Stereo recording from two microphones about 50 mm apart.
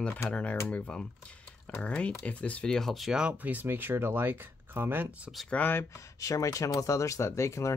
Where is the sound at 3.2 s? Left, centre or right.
Right.